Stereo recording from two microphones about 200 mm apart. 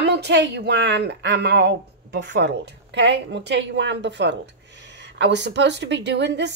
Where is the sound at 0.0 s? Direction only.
55° right (ahead or behind).